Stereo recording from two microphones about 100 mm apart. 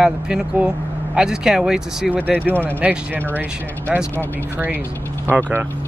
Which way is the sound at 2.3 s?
15° left (ahead or behind).